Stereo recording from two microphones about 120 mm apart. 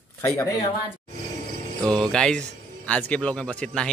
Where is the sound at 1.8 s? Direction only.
5° left (ahead or behind).